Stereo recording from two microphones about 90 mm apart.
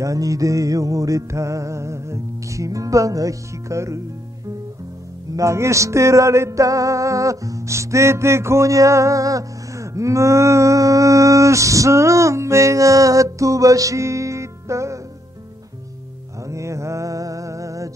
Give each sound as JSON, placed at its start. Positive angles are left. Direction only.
{"t": 0.0, "sound": "music", "side_deg": -40}
{"t": 5.3, "sound": "music", "side_deg": -35}
{"t": 16.4, "sound": "music", "side_deg": -35}